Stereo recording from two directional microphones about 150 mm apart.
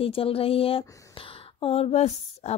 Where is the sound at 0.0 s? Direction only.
40° left (ahead or behind).